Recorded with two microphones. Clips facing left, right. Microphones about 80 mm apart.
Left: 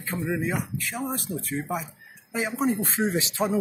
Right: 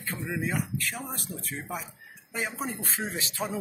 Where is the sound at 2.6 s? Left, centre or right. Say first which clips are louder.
Left 9 dB; centre.